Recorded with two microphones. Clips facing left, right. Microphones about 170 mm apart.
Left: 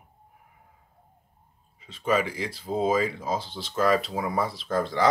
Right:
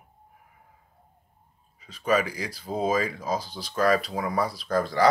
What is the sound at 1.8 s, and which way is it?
Speech, 25° left (ahead or behind).